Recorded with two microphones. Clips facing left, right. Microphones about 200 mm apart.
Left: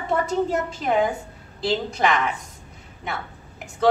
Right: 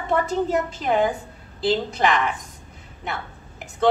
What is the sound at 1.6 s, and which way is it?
Speech, centre (ahead or behind).